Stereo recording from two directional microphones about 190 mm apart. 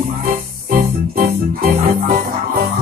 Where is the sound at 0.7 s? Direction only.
50° right (ahead or behind).